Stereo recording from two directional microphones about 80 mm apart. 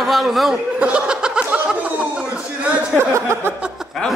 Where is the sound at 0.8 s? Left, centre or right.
Centre.